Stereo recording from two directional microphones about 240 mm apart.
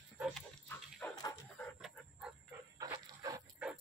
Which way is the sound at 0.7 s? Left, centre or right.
Centre.